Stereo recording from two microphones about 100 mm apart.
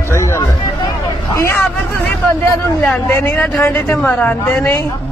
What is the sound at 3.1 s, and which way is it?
A man's voice, 20° left (ahead or behind).